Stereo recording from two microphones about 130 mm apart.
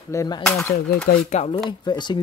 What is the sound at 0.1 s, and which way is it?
Speech, 25° left (ahead or behind).